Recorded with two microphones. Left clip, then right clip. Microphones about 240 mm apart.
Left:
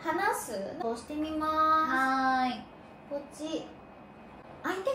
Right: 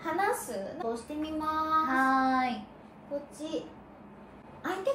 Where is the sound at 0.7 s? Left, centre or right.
Centre.